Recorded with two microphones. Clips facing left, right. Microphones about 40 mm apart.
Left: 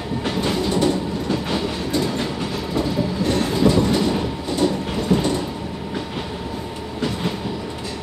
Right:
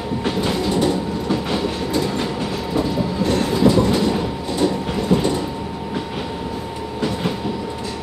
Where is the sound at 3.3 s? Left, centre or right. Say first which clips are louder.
Right 2 dB; centre.